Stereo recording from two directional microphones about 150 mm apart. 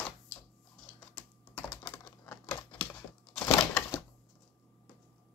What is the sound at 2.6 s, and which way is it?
Typewriter, 30° left (ahead or behind).